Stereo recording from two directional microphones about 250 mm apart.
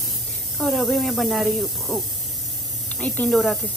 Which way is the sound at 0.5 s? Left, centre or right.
Centre.